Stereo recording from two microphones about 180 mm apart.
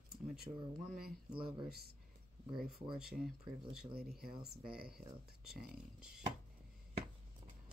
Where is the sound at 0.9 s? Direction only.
5° right (ahead or behind).